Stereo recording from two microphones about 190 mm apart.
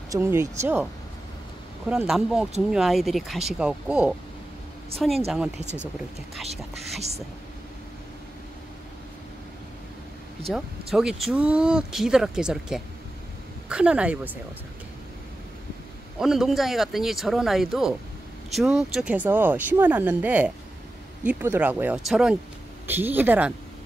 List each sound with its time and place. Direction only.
0.1 s speech: 15° right (ahead or behind)
1.9 s speech: 5° right (ahead or behind)
5.6 s speech: 35° right (ahead or behind)
10.4 s speech: centre (ahead or behind)
16.2 s speech: centre (ahead or behind)